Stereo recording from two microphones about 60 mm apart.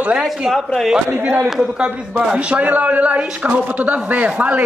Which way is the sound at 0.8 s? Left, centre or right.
Centre.